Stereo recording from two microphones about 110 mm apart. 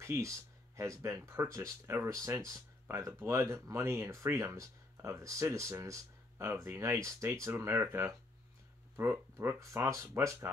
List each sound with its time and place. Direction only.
0.0 s speech: 25° right (ahead or behind)